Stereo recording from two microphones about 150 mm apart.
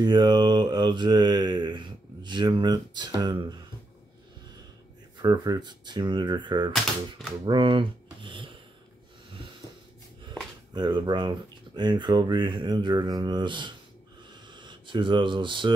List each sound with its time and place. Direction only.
0.0 s mantra: 30° right (ahead or behind)
5.2 s mantra: 25° right (ahead or behind)
7.4 s a sound: 35° right (ahead or behind)
10.7 s mantra: 30° right (ahead or behind)
14.5 s speech: 30° right (ahead or behind)